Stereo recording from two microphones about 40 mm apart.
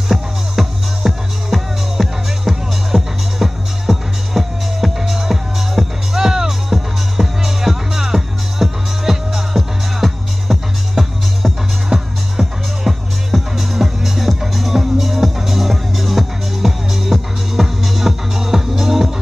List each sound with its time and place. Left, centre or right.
0.1 s music: centre